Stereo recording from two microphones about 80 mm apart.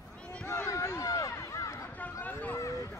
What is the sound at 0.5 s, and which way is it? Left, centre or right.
Run, left.